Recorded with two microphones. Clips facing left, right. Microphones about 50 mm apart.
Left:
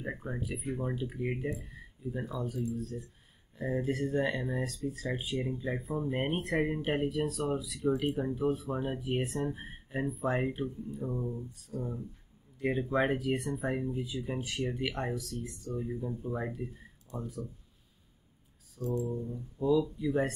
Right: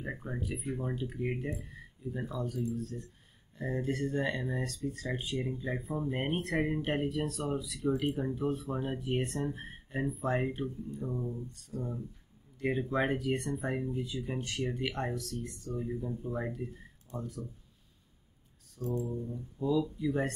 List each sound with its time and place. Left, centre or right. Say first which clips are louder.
0.0 s speech: left 1 dB; centre
18.8 s speech: left 1 dB; centre